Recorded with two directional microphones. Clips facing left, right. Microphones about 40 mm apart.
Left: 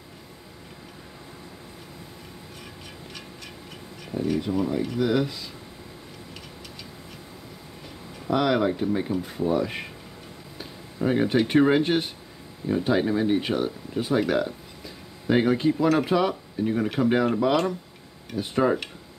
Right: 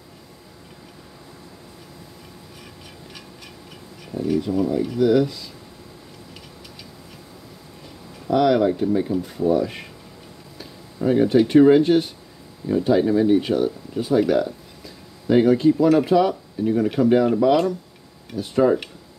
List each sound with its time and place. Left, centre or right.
4.3 s speech: centre
8.3 s speech: centre
11.0 s speech: centre
16.8 s speech: centre